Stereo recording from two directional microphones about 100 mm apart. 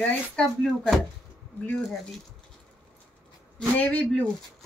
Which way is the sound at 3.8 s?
15° left (ahead or behind).